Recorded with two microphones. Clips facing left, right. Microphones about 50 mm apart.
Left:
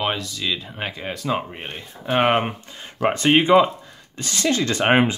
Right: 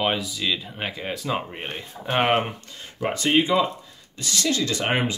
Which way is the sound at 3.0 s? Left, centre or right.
Left.